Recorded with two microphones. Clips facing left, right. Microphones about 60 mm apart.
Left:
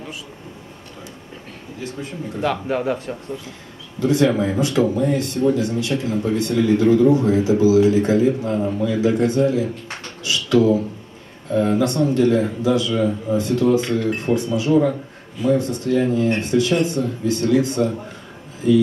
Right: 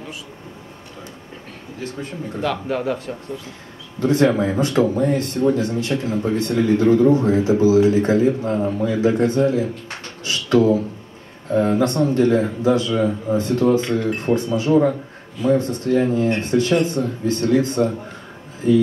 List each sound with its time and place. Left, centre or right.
1.8 s speech: right
2.4 s speech: left
4.0 s speech: right
10.2 s a sound: right
11.5 s speech: right